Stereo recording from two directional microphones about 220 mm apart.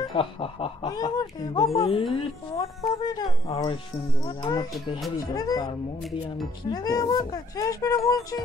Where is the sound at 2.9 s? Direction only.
15° left (ahead or behind).